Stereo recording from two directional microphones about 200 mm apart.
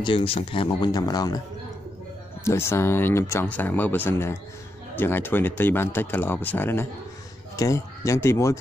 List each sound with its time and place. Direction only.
0.0 s speech: 25° left (ahead or behind)
2.4 s speech: 15° left (ahead or behind)